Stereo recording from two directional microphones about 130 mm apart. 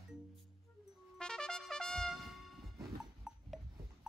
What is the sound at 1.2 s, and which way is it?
Trumpet, 5° left (ahead or behind).